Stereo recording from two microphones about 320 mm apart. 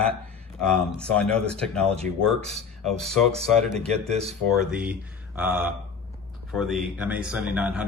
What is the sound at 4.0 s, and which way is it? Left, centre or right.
Speech, centre.